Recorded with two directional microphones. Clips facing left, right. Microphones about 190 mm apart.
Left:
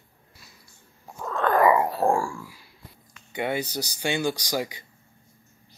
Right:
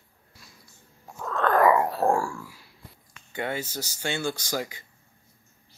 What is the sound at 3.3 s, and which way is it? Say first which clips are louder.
Speech: left 3 dB; 15° left (ahead or behind).